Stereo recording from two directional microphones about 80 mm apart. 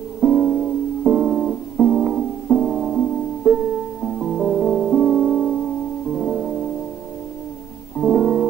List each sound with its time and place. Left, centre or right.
0.2 s music: centre
8.0 s music: centre